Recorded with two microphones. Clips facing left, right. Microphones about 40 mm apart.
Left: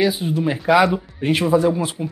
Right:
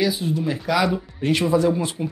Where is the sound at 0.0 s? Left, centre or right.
Left.